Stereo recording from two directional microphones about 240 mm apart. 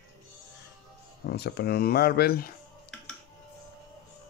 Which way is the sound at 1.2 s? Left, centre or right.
Left.